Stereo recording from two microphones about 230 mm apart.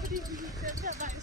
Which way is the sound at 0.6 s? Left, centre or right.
Right.